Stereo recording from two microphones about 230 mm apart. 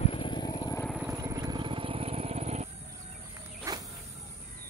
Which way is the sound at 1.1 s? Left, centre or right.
Centre.